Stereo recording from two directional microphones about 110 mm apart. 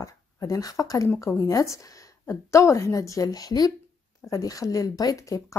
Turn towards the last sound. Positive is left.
turn(degrees=30)  # may be behind; listen again after turning